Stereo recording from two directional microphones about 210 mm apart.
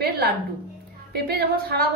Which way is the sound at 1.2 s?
50° right (ahead or behind).